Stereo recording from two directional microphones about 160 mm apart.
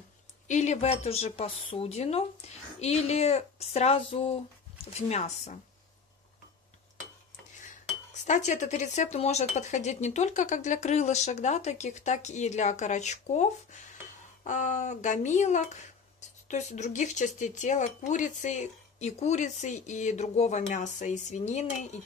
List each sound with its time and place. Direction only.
0.5 s speech: 45° left (ahead or behind)
8.1 s speech: 50° left (ahead or behind)